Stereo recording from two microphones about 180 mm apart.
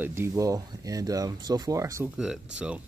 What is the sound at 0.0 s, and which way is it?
Speech, 15° right (ahead or behind).